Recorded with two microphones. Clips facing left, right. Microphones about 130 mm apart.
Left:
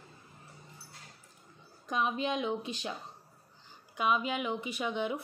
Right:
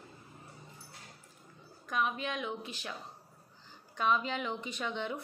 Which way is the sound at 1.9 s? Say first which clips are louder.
Left 3 dB; 20° left (ahead or behind).